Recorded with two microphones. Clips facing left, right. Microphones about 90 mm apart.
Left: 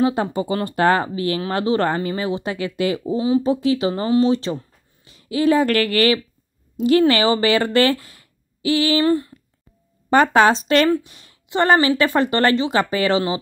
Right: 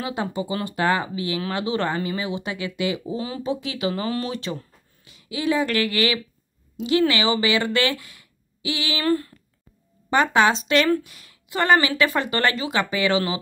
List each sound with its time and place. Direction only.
0.0 s speech: 40° left (ahead or behind)
3.2 s speech: 25° left (ahead or behind)
3.4 s speech: 35° left (ahead or behind)
9.0 s speech: 20° left (ahead or behind)
10.0 s a woman's voice: 45° left (ahead or behind)